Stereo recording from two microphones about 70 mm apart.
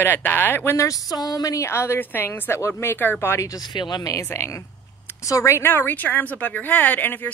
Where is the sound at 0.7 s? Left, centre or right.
Left.